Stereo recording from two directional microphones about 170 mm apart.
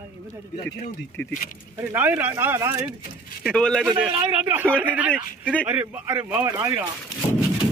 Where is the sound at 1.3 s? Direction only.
50° left (ahead or behind).